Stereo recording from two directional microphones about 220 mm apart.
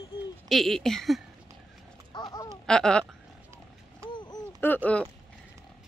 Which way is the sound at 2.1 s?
20° left (ahead or behind).